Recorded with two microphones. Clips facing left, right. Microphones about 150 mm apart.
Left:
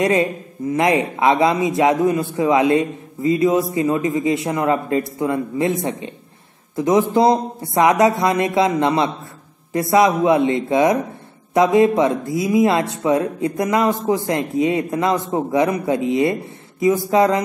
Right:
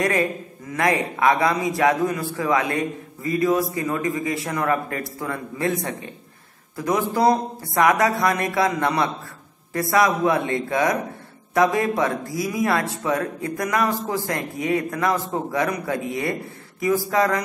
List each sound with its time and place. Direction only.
0.0 s speech: 25° left (ahead or behind)